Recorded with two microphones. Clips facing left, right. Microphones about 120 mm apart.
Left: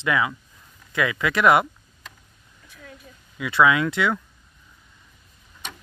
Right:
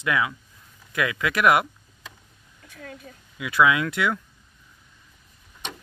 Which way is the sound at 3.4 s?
5° right (ahead or behind).